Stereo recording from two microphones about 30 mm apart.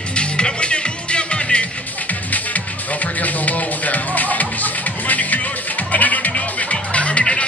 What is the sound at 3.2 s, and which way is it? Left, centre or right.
Music, left.